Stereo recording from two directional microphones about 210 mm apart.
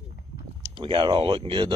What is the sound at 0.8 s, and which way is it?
Speech, 25° right (ahead or behind).